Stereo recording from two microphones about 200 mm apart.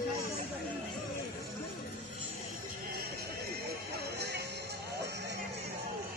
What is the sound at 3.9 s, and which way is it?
Music, 55° right (ahead or behind).